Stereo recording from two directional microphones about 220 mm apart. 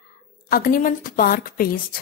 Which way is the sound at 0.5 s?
40° left (ahead or behind).